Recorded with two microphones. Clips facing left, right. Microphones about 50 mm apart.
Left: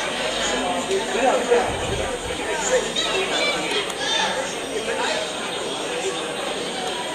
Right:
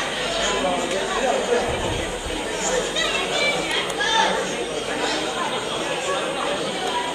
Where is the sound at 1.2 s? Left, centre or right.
Left.